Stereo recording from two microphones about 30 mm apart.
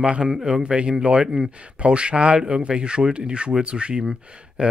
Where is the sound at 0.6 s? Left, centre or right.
Right.